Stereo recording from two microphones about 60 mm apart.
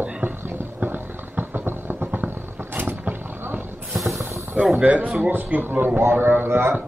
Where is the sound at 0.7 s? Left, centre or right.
Right.